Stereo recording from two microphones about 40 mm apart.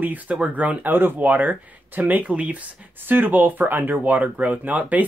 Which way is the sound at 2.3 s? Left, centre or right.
Right.